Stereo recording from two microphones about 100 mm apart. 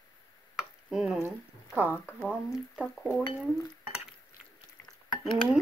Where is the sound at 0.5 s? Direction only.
5° right (ahead or behind).